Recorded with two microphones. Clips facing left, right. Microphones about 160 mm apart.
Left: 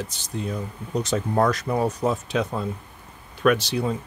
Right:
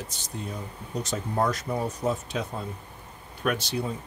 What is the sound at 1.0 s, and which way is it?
Speech, 90° left.